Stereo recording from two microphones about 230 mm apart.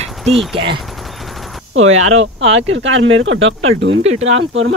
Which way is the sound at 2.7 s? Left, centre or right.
Right.